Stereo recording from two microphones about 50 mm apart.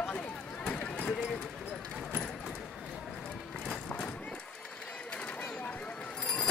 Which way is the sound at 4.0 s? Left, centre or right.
Left.